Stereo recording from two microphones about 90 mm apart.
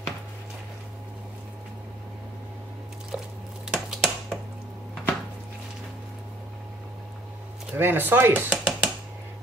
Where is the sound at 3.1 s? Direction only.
10° right (ahead or behind).